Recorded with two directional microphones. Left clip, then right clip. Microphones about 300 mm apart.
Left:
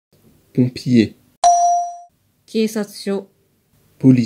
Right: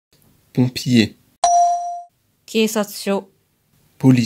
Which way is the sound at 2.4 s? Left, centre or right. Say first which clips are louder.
Right 2 dB; right.